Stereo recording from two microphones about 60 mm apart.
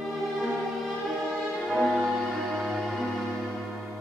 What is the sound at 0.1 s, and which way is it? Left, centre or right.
Violin, centre.